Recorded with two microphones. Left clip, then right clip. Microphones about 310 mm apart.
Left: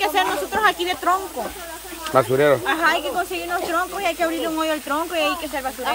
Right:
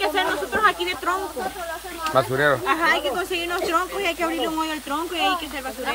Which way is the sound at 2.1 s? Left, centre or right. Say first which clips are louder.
Left 3 dB; centre.